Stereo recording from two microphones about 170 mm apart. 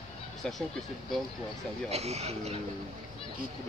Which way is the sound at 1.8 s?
40° right (ahead or behind).